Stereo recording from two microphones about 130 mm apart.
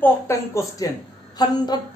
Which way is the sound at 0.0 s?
25° left (ahead or behind).